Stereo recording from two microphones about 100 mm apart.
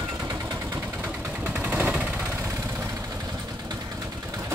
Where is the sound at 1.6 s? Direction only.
15° right (ahead or behind).